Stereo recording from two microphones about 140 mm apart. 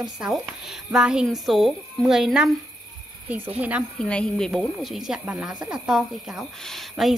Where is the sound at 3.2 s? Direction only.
15° right (ahead or behind).